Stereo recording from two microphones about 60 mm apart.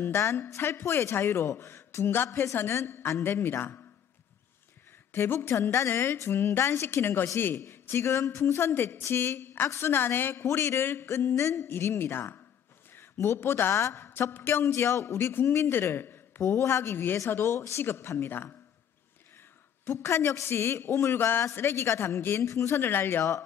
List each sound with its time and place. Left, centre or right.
0.0 s speech: left
5.1 s speech: left
16.5 s speech: left
19.9 s speech: left